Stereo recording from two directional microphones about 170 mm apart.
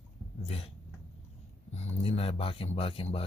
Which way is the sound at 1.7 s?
35° left (ahead or behind).